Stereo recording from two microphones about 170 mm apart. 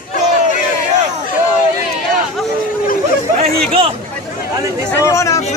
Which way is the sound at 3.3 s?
35° right (ahead or behind).